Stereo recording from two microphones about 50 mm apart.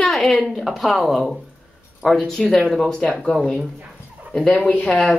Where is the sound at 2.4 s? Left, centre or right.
Centre.